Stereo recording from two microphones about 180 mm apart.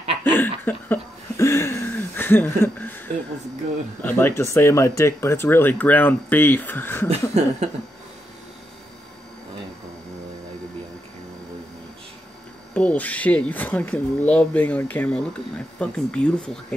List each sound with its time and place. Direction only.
0.2 s a sound: 10° left (ahead or behind)
4.0 s speech: 10° left (ahead or behind)
7.1 s chuckle: 35° right (ahead or behind)
12.7 s speech: 10° left (ahead or behind)